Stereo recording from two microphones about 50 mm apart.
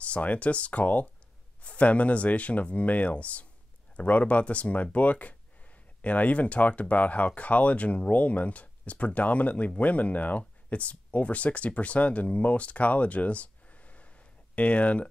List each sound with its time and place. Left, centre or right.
0.0 s speech: left